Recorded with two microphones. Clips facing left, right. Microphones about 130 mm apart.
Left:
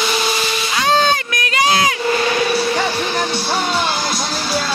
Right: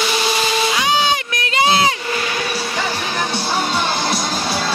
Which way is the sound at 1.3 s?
25° right (ahead or behind).